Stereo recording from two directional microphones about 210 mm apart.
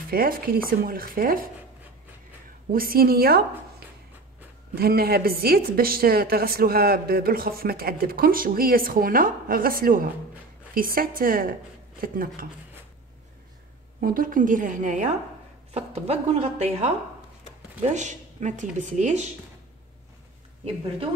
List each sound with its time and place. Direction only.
0.1 s a woman's voice: 45° right (ahead or behind)
2.7 s a woman's voice: 45° right (ahead or behind)
4.7 s a woman's voice: 45° right (ahead or behind)
14.0 s speech: 40° right (ahead or behind)